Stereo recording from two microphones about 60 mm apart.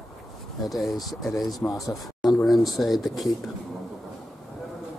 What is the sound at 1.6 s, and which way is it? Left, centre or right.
Speech, left.